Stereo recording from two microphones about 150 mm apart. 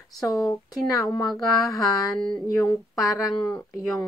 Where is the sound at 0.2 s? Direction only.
25° left (ahead or behind).